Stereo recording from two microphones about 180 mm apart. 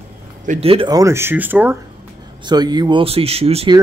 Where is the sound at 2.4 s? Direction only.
25° right (ahead or behind).